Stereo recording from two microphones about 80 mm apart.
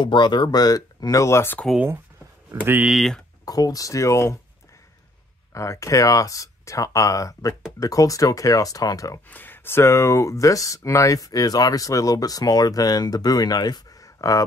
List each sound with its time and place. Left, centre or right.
0.0 s speech: left
2.5 s speech: right
2.9 s speech: centre
3.4 s speech: left
5.5 s speech: left
9.3 s speech: left